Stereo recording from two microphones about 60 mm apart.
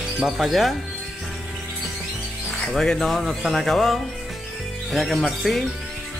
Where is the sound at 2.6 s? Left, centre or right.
Centre.